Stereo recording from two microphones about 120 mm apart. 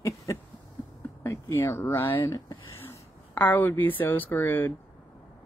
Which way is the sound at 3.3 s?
15° left (ahead or behind).